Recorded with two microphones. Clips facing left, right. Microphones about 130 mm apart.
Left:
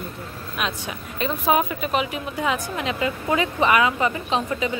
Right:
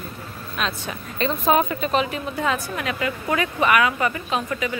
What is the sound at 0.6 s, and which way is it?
A woman's voice, 15° left (ahead or behind).